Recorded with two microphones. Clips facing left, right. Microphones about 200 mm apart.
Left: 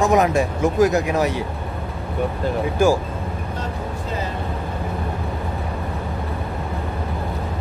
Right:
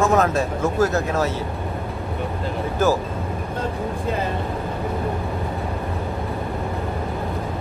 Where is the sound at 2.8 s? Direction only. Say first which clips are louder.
Left 2 dB; 15° left (ahead or behind).